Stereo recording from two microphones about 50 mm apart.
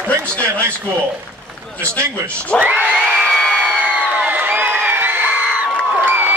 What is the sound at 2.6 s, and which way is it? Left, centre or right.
Crowd, right.